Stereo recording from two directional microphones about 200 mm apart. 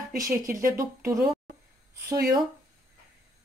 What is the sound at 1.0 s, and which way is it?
Speech, 15° right (ahead or behind).